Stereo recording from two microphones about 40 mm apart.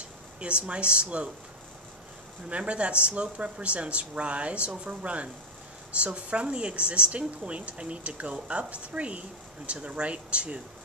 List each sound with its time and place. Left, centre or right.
0.4 s speech: right
2.5 s speech: right